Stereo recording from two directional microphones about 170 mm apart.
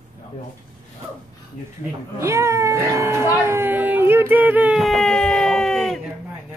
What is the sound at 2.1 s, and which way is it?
Speech, 15° right (ahead or behind).